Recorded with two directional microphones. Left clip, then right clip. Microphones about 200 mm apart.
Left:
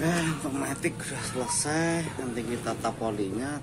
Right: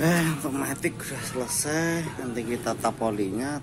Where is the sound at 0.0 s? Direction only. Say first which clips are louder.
Right 4 dB; 45° right (ahead or behind).